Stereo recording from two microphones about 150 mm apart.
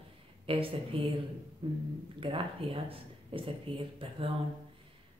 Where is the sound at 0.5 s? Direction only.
35° right (ahead or behind).